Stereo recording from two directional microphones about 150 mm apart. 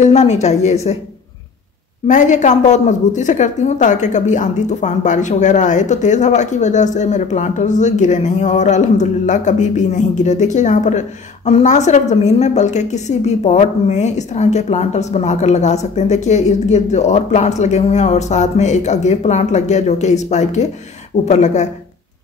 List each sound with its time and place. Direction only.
0.0 s a woman's voice: 50° left (ahead or behind)
2.0 s a woman's voice: 55° left (ahead or behind)